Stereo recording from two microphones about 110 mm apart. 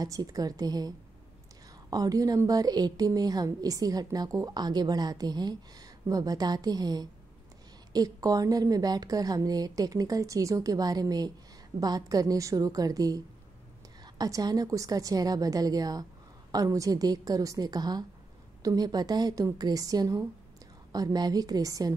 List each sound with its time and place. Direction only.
0.0 s a woman's voice: 35° right (ahead or behind)